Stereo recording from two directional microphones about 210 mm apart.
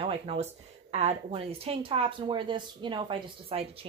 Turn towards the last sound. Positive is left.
turn(degrees=-25)  # may be behind; listen again after turning